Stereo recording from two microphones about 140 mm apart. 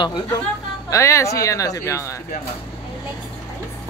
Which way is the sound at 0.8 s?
20° left (ahead or behind).